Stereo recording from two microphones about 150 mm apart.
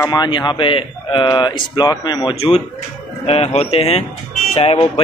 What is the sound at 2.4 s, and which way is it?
Speech, 40° left (ahead or behind).